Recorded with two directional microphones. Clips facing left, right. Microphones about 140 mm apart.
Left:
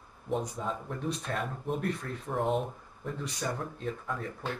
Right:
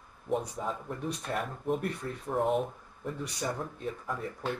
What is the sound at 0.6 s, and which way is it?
Speech, 5° right (ahead or behind).